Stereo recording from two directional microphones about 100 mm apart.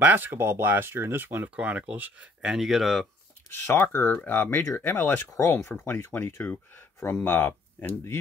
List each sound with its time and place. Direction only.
0.0 s speech: 20° right (ahead or behind); by 3.1 s centre (ahead or behind)
3.4 s speech: 25° left (ahead or behind)